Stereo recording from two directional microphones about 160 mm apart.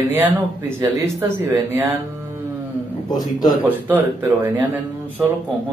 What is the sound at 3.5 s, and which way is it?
Speech, 10° right (ahead or behind).